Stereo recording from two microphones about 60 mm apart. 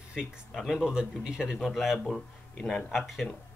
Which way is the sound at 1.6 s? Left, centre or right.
Centre.